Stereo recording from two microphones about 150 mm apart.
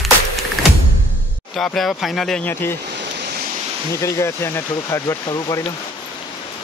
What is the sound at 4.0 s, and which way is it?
Speech, 20° left (ahead or behind).